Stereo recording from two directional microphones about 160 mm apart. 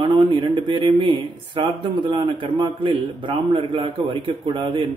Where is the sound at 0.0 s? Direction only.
30° right (ahead or behind).